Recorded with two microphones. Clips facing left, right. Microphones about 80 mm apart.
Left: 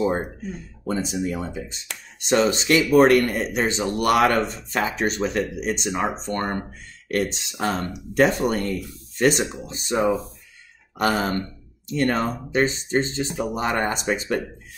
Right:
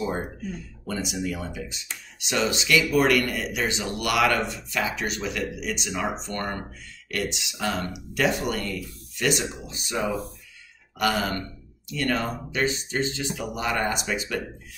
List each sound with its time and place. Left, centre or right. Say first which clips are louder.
0.0 s speech: left 5 dB; left